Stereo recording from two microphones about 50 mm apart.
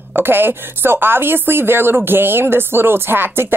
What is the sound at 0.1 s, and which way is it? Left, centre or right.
Speech, right.